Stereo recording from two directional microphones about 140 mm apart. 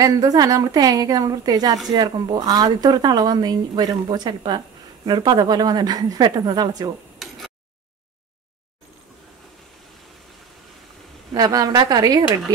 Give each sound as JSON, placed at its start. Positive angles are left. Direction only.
{"t": 0.0, "sound": "a woman's voice", "side_deg": -25}
{"t": 7.2, "sound": "a sound", "side_deg": 0}
{"t": 11.3, "sound": "a woman's voice", "side_deg": -25}